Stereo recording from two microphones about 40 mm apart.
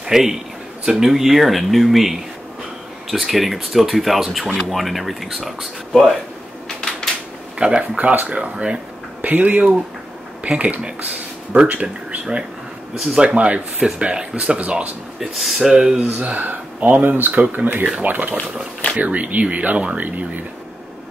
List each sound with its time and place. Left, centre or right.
0.0 s a man's voice: centre
7.5 s speech: right
8.1 s speech: right
8.4 s speech: right
9.2 s speech: right
12.9 s speech: centre
13.2 s speech: right
15.1 s speech: centre
16.1 s speech: right
20.1 s speech: right